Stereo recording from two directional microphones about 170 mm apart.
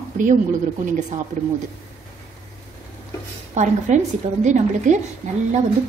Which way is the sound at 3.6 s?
45° right (ahead or behind).